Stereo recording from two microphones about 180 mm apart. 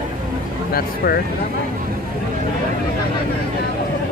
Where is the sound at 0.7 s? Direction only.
60° left (ahead or behind).